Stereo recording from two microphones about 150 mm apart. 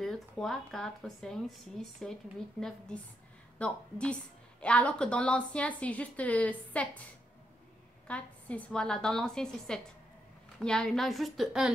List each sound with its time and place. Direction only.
0.0 s speech: centre (ahead or behind)
3.5 s a woman's voice: 5° left (ahead or behind)
8.1 s speech: 10° left (ahead or behind)